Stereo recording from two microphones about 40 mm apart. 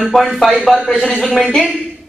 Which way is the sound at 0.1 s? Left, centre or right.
Centre.